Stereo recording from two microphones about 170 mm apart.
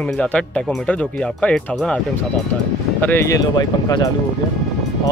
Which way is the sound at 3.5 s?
25° left (ahead or behind).